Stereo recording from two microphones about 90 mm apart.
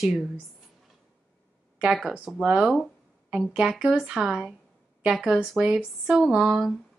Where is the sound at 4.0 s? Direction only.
5° right (ahead or behind).